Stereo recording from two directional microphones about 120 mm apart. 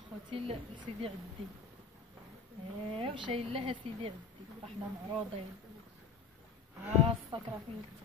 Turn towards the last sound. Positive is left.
turn(degrees=-45)  # may be behind; listen again after turning